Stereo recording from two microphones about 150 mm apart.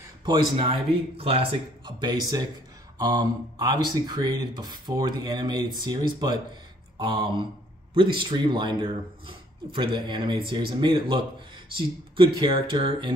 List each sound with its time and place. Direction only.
0.2 s a man's voice: 35° right (ahead or behind)